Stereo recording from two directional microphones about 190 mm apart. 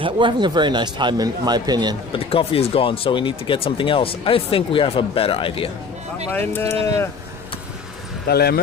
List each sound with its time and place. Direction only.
0.0 s speech: 25° right (ahead or behind)
2.1 s speech: 30° left (ahead or behind)
6.3 s speech: 10° left (ahead or behind)
8.3 s speech: 55° left (ahead or behind)